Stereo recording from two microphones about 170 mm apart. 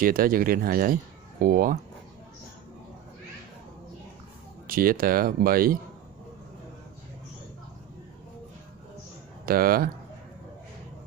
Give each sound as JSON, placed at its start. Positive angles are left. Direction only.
{"t": 0.0, "sound": "speech", "side_deg": -55}
{"t": 4.6, "sound": "speech", "side_deg": -55}
{"t": 9.5, "sound": "speech", "side_deg": -60}